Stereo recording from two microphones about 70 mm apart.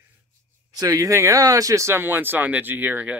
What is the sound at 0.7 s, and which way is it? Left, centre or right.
Speech, right.